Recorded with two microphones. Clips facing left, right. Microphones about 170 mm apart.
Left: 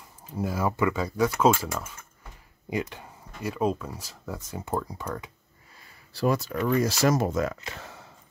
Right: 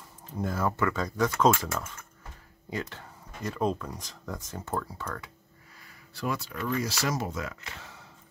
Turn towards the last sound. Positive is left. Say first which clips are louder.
# left 8 dB
turn(degrees=50)  # may be behind; listen again after turning